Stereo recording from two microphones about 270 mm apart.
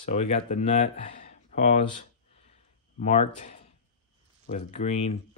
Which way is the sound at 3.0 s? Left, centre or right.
Left.